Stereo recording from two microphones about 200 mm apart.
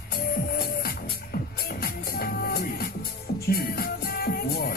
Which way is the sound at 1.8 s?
50° left (ahead or behind).